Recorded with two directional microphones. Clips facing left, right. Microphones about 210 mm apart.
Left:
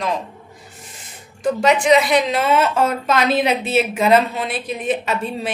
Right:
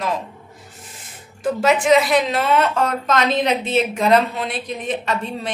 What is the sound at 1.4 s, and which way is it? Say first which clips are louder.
A woman's voice: left 1 dB; 5° right (ahead or behind).